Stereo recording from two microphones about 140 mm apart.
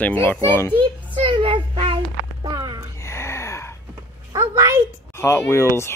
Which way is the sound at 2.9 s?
20° left (ahead or behind).